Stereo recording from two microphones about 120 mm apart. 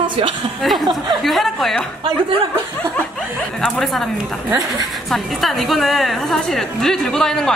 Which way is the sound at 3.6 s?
Centre (ahead or behind).